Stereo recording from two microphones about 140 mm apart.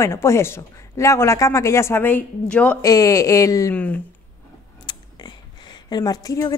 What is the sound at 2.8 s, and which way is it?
Speech, 25° left (ahead or behind).